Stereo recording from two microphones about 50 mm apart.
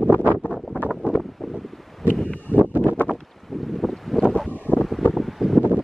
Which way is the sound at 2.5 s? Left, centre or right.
Left.